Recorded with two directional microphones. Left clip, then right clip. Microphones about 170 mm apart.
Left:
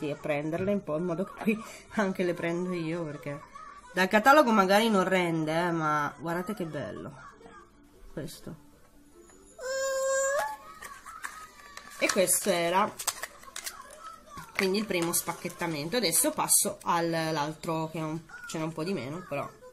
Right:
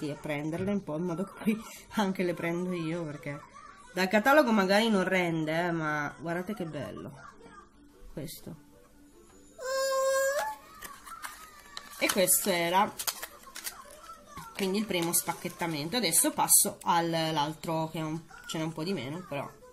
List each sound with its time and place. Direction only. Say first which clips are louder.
0.2 s speech: left 5 dB; 5° right (ahead or behind)
3.9 s speech: left 3 dB; 15° left (ahead or behind)
9.6 s a sound: right 1 dB; 25° right (ahead or behind)
12.0 s speech: left 1 dB; 5° right (ahead or behind)